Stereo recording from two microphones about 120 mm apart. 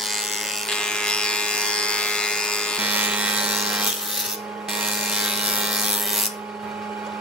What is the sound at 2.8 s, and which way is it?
Wood, 15° right (ahead or behind).